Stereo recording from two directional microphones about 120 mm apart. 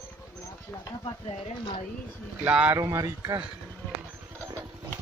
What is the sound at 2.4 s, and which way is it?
Speech, 10° right (ahead or behind).